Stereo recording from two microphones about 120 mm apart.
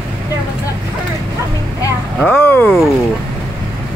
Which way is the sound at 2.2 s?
15° left (ahead or behind).